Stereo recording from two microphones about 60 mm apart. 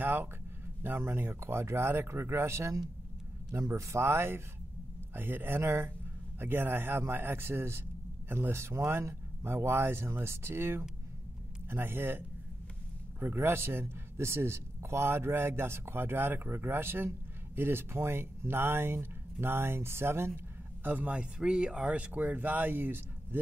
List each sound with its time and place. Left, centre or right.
0.0 s a sound: right
0.8 s a man's voice: right
20.8 s speech: right